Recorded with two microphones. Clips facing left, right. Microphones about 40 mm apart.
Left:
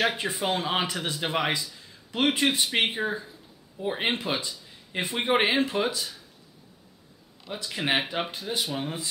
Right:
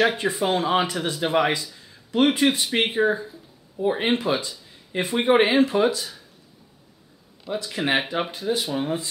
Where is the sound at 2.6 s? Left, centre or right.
Centre.